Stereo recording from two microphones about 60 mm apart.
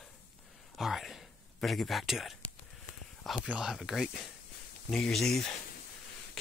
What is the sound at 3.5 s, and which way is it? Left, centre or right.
Speech, centre.